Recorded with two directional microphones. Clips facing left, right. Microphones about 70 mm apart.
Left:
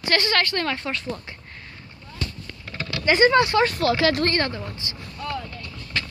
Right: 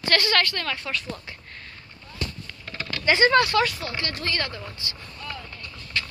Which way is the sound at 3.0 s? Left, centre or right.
Left.